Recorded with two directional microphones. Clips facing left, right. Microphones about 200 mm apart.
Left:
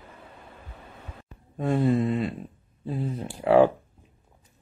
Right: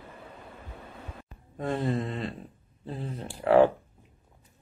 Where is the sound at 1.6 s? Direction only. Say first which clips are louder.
Left 6 dB; 10° left (ahead or behind).